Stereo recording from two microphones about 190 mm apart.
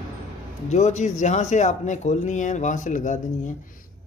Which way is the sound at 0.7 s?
35° left (ahead or behind).